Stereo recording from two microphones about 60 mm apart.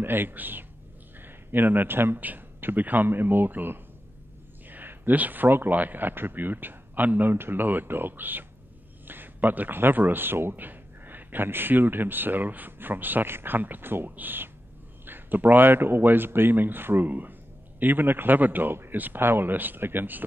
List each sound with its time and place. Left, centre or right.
0.0 s a man's voice: right